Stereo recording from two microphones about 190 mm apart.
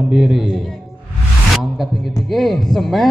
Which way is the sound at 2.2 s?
Centre (ahead or behind).